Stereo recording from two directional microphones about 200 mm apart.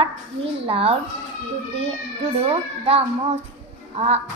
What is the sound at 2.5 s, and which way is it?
Speech, 30° right (ahead or behind).